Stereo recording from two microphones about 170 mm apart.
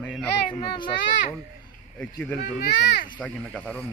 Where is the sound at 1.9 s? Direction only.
10° left (ahead or behind).